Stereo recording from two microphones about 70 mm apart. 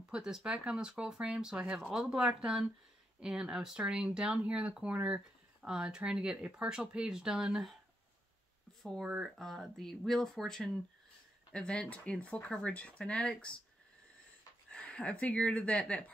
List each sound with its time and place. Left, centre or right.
0.1 s speech: centre
9.0 s speech: centre
9.4 s speech: centre
14.7 s speech: centre